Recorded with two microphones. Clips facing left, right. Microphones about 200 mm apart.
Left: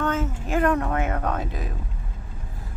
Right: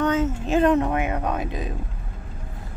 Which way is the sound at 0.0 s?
20° right (ahead or behind).